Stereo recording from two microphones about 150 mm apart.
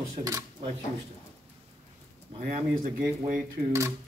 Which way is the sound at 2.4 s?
65° right (ahead or behind).